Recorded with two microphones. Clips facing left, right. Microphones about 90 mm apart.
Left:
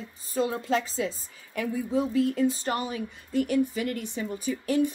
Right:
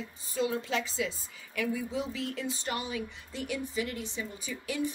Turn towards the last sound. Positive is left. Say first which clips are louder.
# left 9 dB
turn(degrees=45)  # may be behind; listen again after turning